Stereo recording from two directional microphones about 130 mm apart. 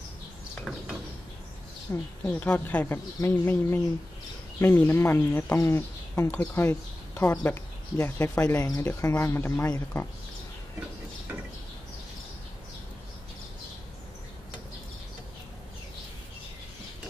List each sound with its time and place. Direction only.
0.7 s a sound: 5° left (ahead or behind)
1.9 s speech: 15° left (ahead or behind)
8.5 s speech: 30° left (ahead or behind)